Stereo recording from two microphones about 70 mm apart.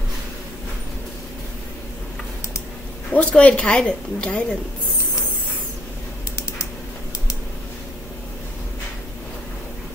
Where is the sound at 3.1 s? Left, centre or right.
Centre.